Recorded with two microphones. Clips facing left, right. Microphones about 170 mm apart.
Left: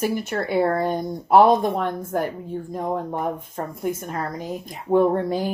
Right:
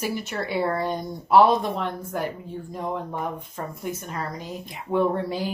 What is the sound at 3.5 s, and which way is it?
Speech, 50° left (ahead or behind).